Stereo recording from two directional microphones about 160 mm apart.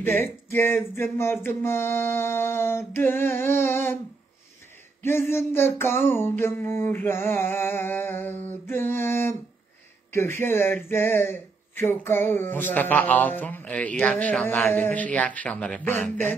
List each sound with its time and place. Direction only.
0.5 s speech: 15° left (ahead or behind)
5.0 s speech: 15° left (ahead or behind)